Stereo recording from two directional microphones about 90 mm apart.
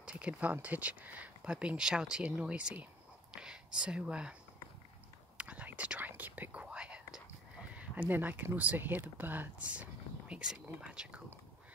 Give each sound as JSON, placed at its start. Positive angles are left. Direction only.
{"t": 0.0, "sound": "speech", "side_deg": -15}
{"t": 5.4, "sound": "whispering", "side_deg": -15}
{"t": 7.7, "sound": "speech", "side_deg": -15}